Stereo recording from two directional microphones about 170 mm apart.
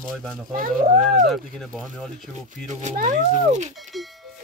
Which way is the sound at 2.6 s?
45° right (ahead or behind).